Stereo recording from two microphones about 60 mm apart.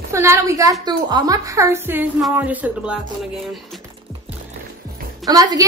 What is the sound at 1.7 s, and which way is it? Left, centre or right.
Speech, right.